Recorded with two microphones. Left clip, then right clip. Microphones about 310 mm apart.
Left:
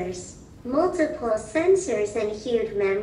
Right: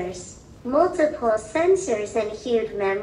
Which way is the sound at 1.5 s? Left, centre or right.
Centre.